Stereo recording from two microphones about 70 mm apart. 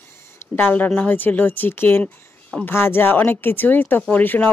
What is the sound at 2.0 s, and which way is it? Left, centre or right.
Speech, centre.